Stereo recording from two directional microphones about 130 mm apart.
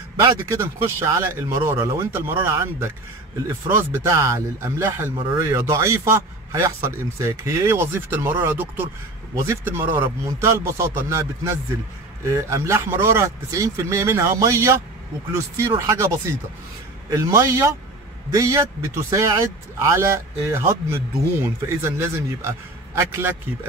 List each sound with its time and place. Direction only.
0.2 s a man's voice: 25° right (ahead or behind)